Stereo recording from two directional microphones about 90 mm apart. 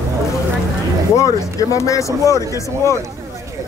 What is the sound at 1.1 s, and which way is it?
Speech, 35° left (ahead or behind).